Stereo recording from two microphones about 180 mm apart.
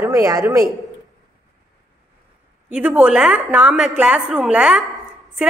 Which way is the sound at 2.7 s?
5° right (ahead or behind).